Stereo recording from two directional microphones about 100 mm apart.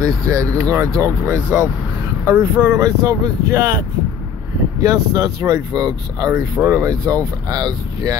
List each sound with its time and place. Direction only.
0.0 s speech: 35° right (ahead or behind)
4.8 s speech: 35° right (ahead or behind)